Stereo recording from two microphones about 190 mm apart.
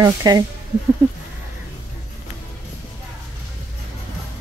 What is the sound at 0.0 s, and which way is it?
Speech, 20° right (ahead or behind).